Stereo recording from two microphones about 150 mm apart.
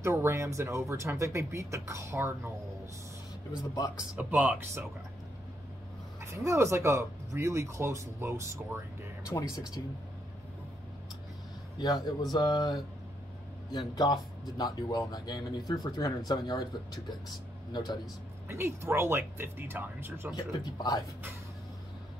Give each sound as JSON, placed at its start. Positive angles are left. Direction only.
{"t": 0.0, "sound": "speech", "side_deg": -15}
{"t": 3.9, "sound": "speech", "side_deg": -10}
{"t": 6.3, "sound": "speech", "side_deg": -20}
{"t": 9.3, "sound": "speech", "side_deg": 25}
{"t": 11.8, "sound": "speech", "side_deg": 25}
{"t": 18.5, "sound": "speech", "side_deg": -15}
{"t": 20.3, "sound": "speech", "side_deg": 25}